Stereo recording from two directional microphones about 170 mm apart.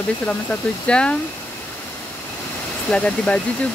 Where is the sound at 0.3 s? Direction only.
5° left (ahead or behind).